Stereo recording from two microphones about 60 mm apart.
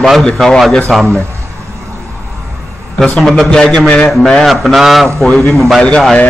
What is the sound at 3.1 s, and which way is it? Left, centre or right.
Speech, centre.